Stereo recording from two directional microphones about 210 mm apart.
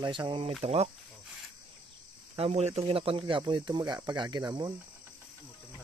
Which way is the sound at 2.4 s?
30° right (ahead or behind).